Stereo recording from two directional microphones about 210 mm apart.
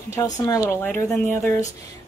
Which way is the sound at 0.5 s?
10° left (ahead or behind).